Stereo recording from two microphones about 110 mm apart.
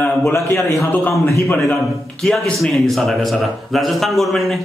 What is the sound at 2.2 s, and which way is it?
A man's voice, 5° left (ahead or behind).